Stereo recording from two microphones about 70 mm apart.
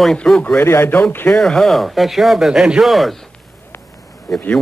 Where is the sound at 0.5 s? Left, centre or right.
Left.